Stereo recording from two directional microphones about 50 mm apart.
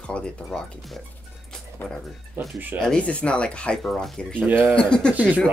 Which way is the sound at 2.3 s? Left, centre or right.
Right.